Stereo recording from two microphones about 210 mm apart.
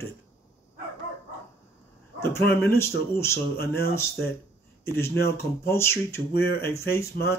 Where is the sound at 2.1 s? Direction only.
10° left (ahead or behind).